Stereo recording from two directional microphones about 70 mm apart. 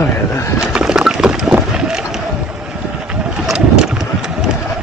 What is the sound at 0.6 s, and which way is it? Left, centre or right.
Boat, centre.